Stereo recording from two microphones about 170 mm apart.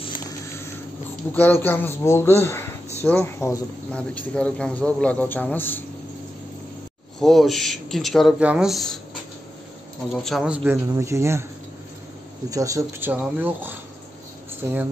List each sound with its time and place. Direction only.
1.3 s a man's voice: 10° left (ahead or behind)
7.2 s speech: centre (ahead or behind)
10.1 s speech: centre (ahead or behind)
10.9 s speech: 15° right (ahead or behind)
12.4 s speech: 20° right (ahead or behind)